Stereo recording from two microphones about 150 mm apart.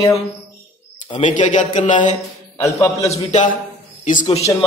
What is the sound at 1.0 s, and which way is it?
A man's voice, 50° left (ahead or behind).